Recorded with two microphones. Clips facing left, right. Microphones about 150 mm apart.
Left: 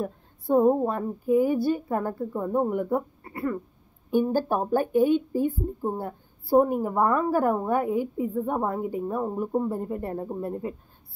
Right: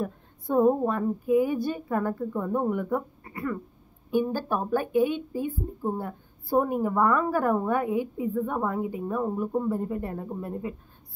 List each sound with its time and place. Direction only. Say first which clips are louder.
0.6 s speech: left 1 dB; 15° left (ahead or behind)
0.8 s speech: even; 30° left (ahead or behind)
4.2 s speech: left 4 dB; 45° left (ahead or behind)
5.9 s speech: left 1 dB; 25° left (ahead or behind)
7.9 s a woman's voice: left 2 dB; 20° right (ahead or behind)
8.5 s speech: left 1 dB; 25° left (ahead or behind)
9.8 s speech: left 1 dB; 35° left (ahead or behind)